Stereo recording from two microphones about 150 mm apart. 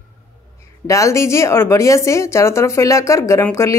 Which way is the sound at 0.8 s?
20° left (ahead or behind).